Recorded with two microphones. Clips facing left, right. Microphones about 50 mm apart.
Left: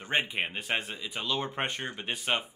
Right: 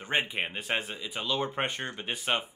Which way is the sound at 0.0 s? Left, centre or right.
Centre.